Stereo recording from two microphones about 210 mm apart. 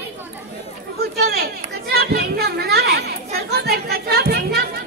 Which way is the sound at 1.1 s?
50° right (ahead or behind).